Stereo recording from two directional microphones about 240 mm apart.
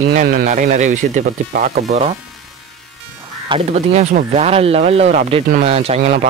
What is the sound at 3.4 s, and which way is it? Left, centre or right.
Speech, right.